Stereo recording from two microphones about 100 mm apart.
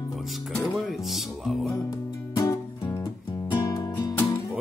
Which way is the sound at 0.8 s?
Centre (ahead or behind).